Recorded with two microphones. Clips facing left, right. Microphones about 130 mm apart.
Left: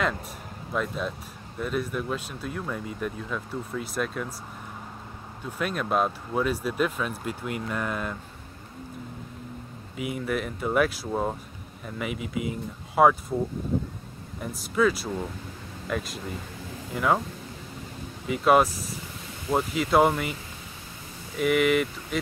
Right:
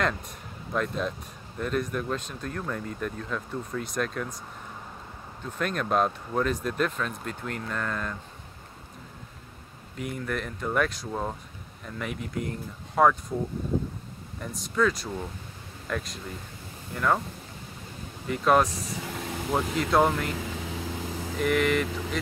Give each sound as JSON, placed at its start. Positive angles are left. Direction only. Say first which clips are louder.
{"t": 0.7, "sound": "speech", "louder": "right 1 dB", "side_deg": 5}
{"t": 5.4, "sound": "speech", "louder": "even", "side_deg": 10}
{"t": 9.9, "sound": "speech", "louder": "left 3 dB", "side_deg": 5}
{"t": 14.4, "sound": "speech", "louder": "left 2 dB", "side_deg": 5}
{"t": 18.2, "sound": "speech", "louder": "left 2 dB", "side_deg": 5}
{"t": 19.1, "sound": "vehicle", "louder": "right 8 dB", "side_deg": -80}
{"t": 19.5, "sound": "speech", "louder": "left 2 dB", "side_deg": 5}
{"t": 20.3, "sound": "vehicle", "louder": "right 9 dB", "side_deg": -90}
{"t": 21.4, "sound": "speech", "louder": "left 2 dB", "side_deg": 5}